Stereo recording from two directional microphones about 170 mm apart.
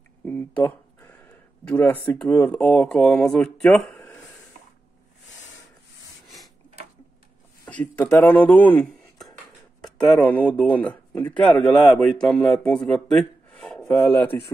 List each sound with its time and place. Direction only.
0.2 s a sound: 10° left (ahead or behind)
0.7 s speech: 10° left (ahead or behind)
7.6 s speech: 10° left (ahead or behind)